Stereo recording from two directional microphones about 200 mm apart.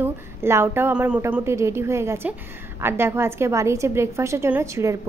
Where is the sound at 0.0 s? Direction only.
10° right (ahead or behind).